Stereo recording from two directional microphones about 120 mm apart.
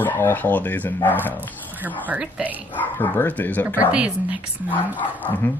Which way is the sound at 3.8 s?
10° right (ahead or behind).